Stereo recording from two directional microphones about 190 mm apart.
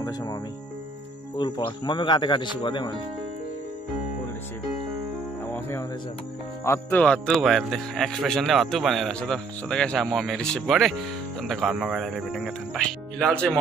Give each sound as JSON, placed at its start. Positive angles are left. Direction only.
{"t": 0.0, "sound": "speech", "side_deg": 20}
{"t": 5.5, "sound": "music", "side_deg": 10}
{"t": 6.6, "sound": "a man's voice", "side_deg": 10}